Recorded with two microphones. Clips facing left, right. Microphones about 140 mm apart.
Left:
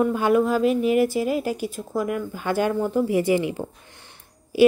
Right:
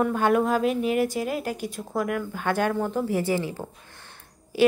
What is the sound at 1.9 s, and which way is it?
Speech, 55° right (ahead or behind).